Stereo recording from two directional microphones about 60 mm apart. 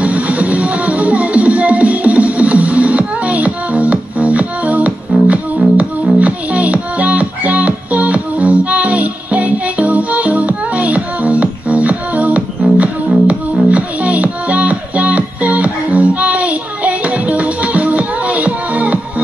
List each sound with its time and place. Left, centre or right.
0.0 s music: right